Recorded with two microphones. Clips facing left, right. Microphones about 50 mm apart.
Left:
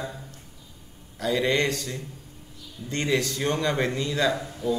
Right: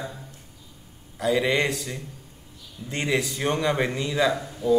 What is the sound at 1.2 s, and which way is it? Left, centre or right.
A man's voice, centre.